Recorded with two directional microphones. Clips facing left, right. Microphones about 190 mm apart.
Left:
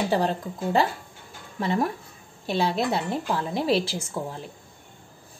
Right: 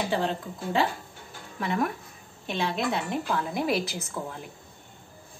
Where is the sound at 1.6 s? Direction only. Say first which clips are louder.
Left 3 dB; 30° left (ahead or behind).